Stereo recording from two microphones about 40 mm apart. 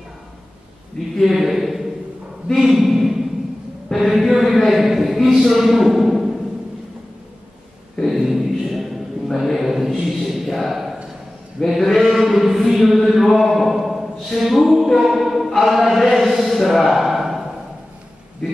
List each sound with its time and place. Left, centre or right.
1.2 s a man's voice: centre
2.5 s a sound: centre
3.9 s chant: centre
4.3 s a man's voice: centre
8.0 s mantra: centre
10.0 s a sound: centre
11.6 s chant: centre
15.0 s choir: centre
16.9 s a sound: centre